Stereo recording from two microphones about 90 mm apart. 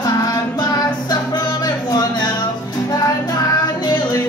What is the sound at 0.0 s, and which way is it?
Child singing, 45° left (ahead or behind).